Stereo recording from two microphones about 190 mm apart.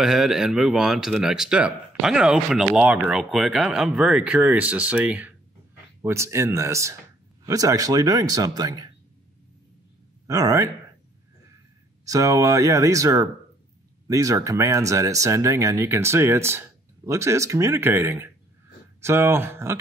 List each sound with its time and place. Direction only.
0.0 s speech: centre (ahead or behind); by 8.8 s 20° right (ahead or behind)
10.2 s speech: 15° right (ahead or behind)
12.0 s speech: 20° right (ahead or behind)